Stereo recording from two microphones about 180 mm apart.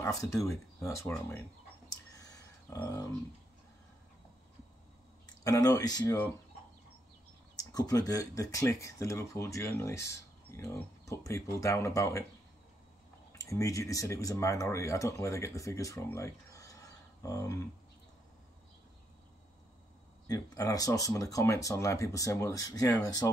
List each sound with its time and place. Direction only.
0.0 s speech: 15° left (ahead or behind)
1.9 s a sound: 20° left (ahead or behind)
5.4 s speech: 20° left (ahead or behind)
7.5 s speech: 20° left (ahead or behind)
13.4 s speech: 15° left (ahead or behind)
20.2 s speech: 20° left (ahead or behind)